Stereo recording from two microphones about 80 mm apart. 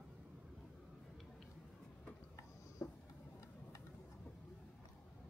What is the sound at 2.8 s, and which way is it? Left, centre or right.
Vehicle, left.